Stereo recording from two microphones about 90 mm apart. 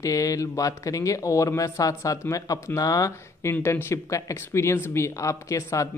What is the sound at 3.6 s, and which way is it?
Speech, 30° left (ahead or behind).